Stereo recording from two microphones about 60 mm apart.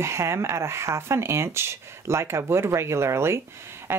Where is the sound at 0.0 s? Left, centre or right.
Right.